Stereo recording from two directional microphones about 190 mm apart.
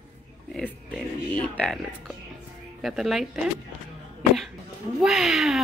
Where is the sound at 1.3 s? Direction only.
5° left (ahead or behind).